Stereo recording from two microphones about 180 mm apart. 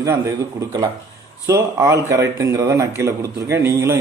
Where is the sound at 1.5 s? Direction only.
15° right (ahead or behind).